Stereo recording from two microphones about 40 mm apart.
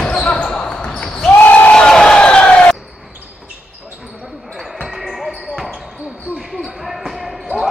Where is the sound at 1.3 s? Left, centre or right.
Left.